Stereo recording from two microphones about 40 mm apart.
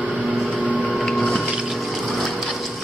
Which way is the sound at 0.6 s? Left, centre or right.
Right.